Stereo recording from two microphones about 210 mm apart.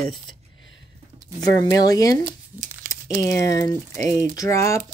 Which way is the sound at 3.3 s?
15° left (ahead or behind).